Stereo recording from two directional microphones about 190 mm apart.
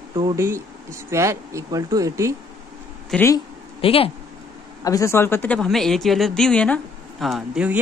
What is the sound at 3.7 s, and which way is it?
Speech, 30° left (ahead or behind).